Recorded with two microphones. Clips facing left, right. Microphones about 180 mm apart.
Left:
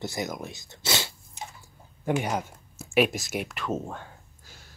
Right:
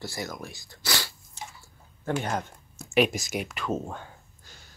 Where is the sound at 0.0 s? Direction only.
20° left (ahead or behind).